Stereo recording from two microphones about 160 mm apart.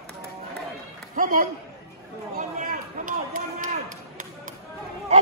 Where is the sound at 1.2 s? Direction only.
60° right (ahead or behind).